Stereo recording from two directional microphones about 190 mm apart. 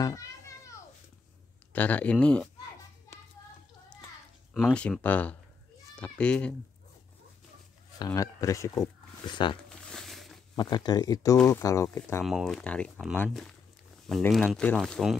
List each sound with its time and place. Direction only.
1.7 s speech: 10° left (ahead or behind)
4.6 s speech: centre (ahead or behind)
8.0 s speech: 15° left (ahead or behind)
9.7 s a sound: centre (ahead or behind)
10.5 s speech: 20° left (ahead or behind)
12.3 s speech: centre (ahead or behind)